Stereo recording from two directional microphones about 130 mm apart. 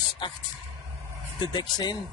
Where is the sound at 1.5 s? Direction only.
35° left (ahead or behind).